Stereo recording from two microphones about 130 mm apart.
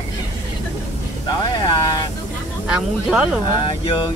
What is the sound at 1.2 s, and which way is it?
Speech, 35° left (ahead or behind).